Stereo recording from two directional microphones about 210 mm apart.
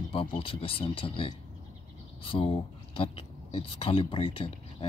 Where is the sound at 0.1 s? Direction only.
25° left (ahead or behind).